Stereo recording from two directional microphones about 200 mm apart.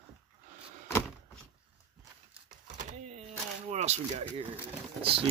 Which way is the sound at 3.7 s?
35° right (ahead or behind).